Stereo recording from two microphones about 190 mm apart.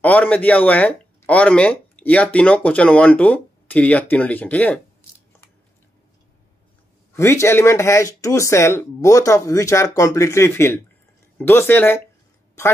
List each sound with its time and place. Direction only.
0.0 s speech: 10° left (ahead or behind)
7.2 s speech: 15° left (ahead or behind)